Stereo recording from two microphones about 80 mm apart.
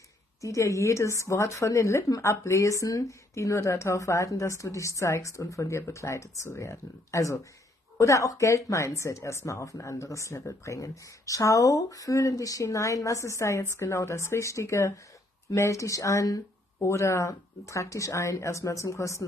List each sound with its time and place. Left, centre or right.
0.4 s speech: left